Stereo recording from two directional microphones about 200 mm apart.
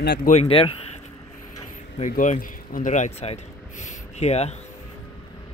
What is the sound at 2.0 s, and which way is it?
Speech, 40° left (ahead or behind).